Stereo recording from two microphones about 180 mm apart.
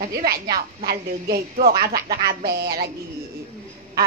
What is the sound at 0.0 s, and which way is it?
Speech, 60° right (ahead or behind).